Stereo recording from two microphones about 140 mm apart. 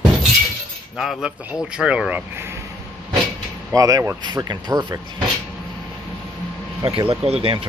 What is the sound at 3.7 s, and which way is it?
Speech, 25° right (ahead or behind).